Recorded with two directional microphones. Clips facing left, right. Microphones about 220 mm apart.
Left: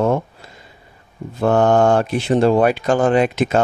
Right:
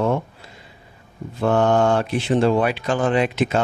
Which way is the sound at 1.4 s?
45° left (ahead or behind).